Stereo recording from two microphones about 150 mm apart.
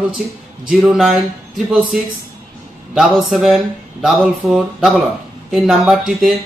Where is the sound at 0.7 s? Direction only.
5° right (ahead or behind).